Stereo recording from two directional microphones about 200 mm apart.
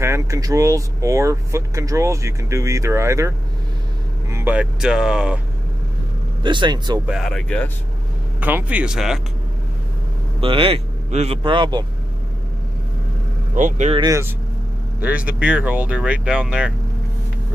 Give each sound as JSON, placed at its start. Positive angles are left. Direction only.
{"t": 0.0, "sound": "speech", "side_deg": -15}
{"t": 6.4, "sound": "speech", "side_deg": -25}
{"t": 7.1, "sound": "speech", "side_deg": 0}
{"t": 8.4, "sound": "speech", "side_deg": -10}
{"t": 10.4, "sound": "speech", "side_deg": -25}
{"t": 13.6, "sound": "speech", "side_deg": -35}
{"t": 14.0, "sound": "speech", "side_deg": -15}